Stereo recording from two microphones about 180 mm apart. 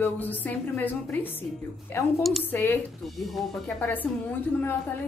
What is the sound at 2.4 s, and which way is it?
Speech, 10° left (ahead or behind).